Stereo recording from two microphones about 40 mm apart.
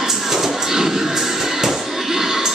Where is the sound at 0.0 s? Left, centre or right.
Centre.